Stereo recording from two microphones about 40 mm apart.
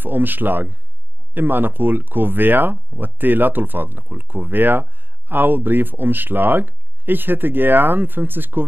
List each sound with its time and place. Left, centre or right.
0.0 s speech: right